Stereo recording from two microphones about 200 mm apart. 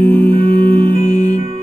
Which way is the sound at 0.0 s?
10° left (ahead or behind).